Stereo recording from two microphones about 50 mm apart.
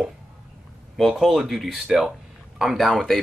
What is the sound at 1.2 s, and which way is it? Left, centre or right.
Speech, centre.